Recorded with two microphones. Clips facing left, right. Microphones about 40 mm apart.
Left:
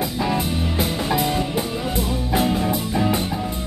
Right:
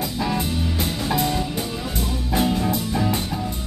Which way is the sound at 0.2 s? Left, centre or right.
Centre.